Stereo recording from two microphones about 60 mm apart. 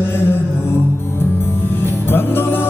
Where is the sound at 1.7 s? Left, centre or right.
Left.